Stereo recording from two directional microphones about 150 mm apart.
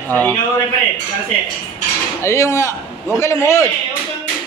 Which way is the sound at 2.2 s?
20° left (ahead or behind).